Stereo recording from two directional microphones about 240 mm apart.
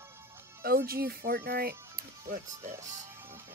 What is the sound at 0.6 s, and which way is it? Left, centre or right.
Speech, right.